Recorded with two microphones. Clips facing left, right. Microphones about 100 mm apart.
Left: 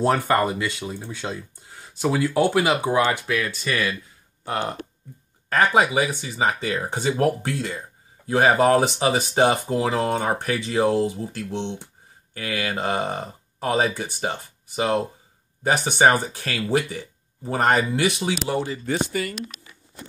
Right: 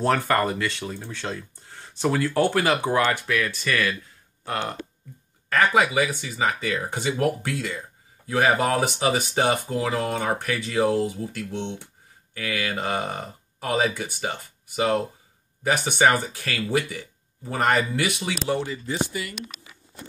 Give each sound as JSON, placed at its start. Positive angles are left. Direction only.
{"t": 0.0, "sound": "speech", "side_deg": 15}
{"t": 5.5, "sound": "speech", "side_deg": 25}
{"t": 18.9, "sound": "speech", "side_deg": 50}